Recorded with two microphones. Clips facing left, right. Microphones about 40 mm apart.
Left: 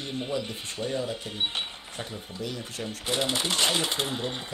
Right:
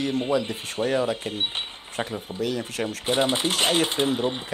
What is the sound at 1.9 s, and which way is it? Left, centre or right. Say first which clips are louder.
Speech: right 10 dB; right.